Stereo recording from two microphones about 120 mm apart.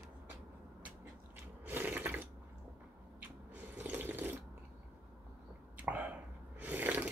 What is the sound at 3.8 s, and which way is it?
Water, 15° right (ahead or behind).